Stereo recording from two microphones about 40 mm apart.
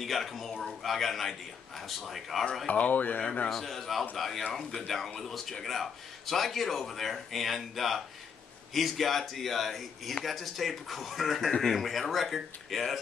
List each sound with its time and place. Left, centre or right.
0.0 s a man's voice: centre
2.7 s speech: left
3.4 s a man's voice: centre